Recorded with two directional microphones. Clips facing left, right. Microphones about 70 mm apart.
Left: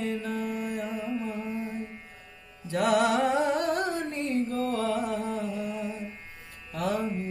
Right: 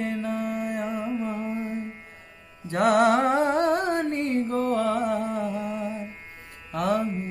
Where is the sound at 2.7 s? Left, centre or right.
Right.